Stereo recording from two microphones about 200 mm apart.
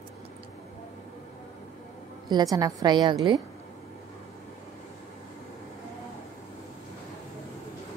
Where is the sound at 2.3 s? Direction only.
20° right (ahead or behind).